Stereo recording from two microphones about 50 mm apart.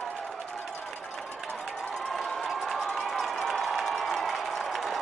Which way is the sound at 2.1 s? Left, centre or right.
Centre.